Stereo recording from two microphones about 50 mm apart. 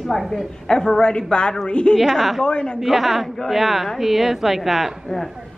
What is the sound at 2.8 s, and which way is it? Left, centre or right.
A woman's voice, centre.